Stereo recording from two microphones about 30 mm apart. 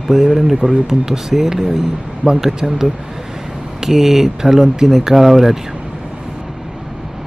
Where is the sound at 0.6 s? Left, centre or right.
Right.